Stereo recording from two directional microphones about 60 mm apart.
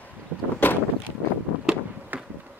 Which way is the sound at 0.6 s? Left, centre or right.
Left.